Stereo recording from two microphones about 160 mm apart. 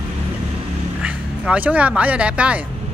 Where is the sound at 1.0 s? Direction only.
5° right (ahead or behind).